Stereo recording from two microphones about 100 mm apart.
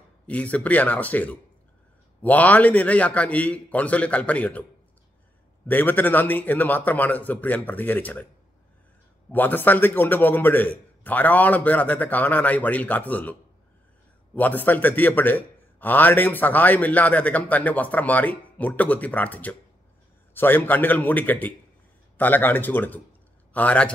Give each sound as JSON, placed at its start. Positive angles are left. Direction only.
{"t": 0.3, "sound": "a man's voice", "side_deg": 15}
{"t": 5.7, "sound": "a man's voice", "side_deg": 15}
{"t": 9.3, "sound": "a man's voice", "side_deg": 20}